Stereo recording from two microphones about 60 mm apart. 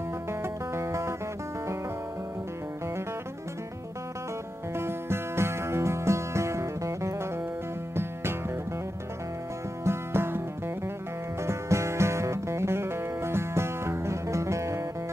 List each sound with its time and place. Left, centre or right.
0.3 s music: right
4.7 s music: right
7.9 s music: right
9.8 s music: right
11.4 s music: right